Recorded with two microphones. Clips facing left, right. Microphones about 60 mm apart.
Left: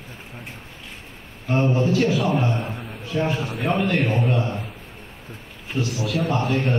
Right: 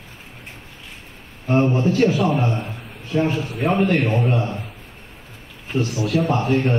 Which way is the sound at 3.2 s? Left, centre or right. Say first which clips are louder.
Right 2 dB; left.